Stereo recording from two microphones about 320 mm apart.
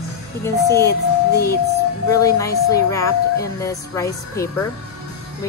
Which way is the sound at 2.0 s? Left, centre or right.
Centre.